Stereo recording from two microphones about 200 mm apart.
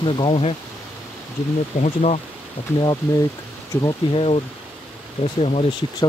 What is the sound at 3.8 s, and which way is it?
Speech, 30° left (ahead or behind).